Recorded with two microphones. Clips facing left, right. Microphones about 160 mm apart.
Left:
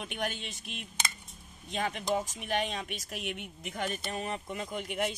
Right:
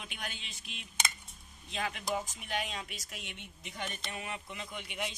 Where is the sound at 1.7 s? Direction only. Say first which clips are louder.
Left 4 dB; 40° left (ahead or behind).